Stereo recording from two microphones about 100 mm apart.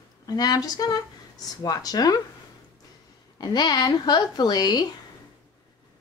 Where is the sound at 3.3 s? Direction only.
45° left (ahead or behind).